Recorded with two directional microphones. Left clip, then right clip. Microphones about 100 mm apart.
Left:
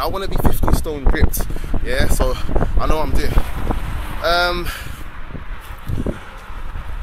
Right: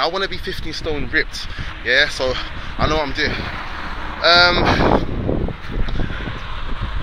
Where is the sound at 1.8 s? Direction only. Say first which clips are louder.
Right 5 dB; 30° left (ahead or behind).